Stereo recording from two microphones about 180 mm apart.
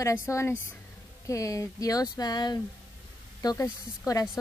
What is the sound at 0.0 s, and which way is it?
Speech, 15° left (ahead or behind).